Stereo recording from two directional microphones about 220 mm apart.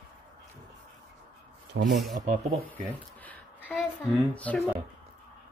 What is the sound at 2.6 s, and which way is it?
Speech, 5° left (ahead or behind).